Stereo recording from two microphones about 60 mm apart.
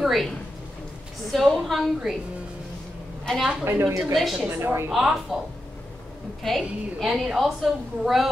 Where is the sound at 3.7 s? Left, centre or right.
Right.